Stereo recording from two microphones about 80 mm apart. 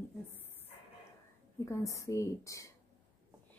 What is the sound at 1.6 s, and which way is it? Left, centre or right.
A woman's voice, left.